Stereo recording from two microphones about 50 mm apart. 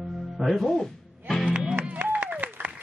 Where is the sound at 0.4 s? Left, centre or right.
Centre.